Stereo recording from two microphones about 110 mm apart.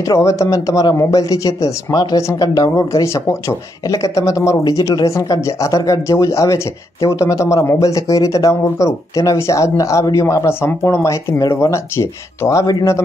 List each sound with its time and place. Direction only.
0.0 s speech: 30° left (ahead or behind)